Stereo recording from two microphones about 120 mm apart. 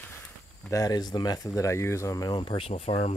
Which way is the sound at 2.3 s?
45° left (ahead or behind).